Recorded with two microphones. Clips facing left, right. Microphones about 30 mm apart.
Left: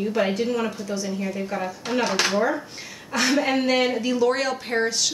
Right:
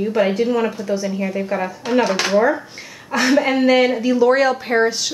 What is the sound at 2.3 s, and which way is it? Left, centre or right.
Speech, centre.